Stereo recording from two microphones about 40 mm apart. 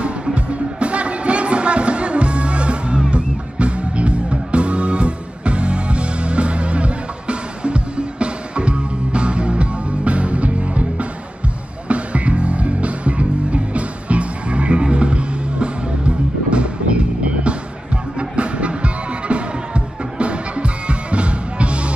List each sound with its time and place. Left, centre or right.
0.0 s music: right